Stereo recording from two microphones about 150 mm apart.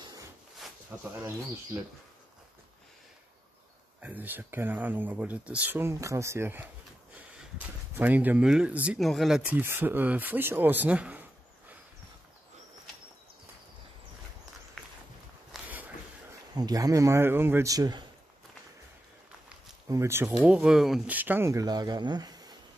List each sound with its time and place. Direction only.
0.0 s a sound: 25° right (ahead or behind)
0.9 s speech: 10° right (ahead or behind)
4.0 s speech: 10° right (ahead or behind)
15.5 s a sound: 10° right (ahead or behind)
16.5 s speech: 25° right (ahead or behind)
19.9 s speech: 20° right (ahead or behind)
20.2 s speech: 5° right (ahead or behind); by 22.6 s 25° right (ahead or behind)